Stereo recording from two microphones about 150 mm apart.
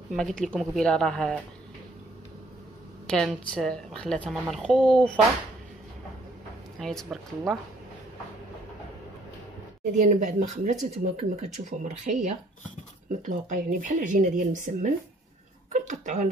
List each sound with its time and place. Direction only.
0.1 s a woman's voice: 5° left (ahead or behind)
3.1 s a woman's voice: 5° left (ahead or behind)
6.8 s a woman's voice: 5° left (ahead or behind)
9.9 s speech: 50° right (ahead or behind)
15.7 s a sound: 55° right (ahead or behind)